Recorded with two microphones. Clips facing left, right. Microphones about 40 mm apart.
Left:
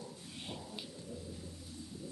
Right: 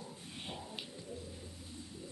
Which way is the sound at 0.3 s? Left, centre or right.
Right.